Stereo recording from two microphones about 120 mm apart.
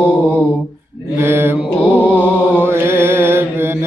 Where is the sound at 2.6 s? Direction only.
20° right (ahead or behind).